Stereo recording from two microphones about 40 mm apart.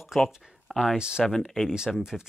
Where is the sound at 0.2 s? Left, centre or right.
Centre.